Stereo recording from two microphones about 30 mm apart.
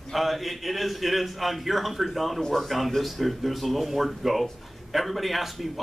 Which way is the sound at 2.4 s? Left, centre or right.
Centre.